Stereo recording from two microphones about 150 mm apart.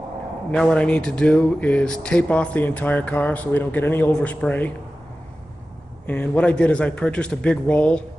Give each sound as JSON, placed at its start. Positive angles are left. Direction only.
{"t": 0.5, "sound": "speech", "side_deg": 5}
{"t": 6.0, "sound": "speech", "side_deg": 10}